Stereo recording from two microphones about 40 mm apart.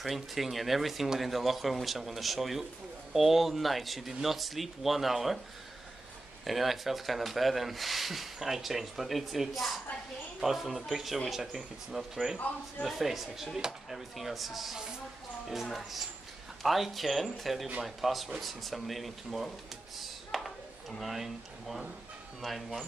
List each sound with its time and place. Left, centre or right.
0.0 s speech: centre
6.4 s speech: centre
12.4 s speech: left
12.8 s speech: centre
20.2 s a sound: centre
21.0 s speech: centre